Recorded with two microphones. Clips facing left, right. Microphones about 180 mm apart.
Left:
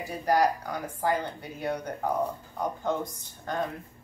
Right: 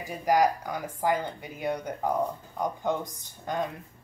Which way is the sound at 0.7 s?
15° right (ahead or behind).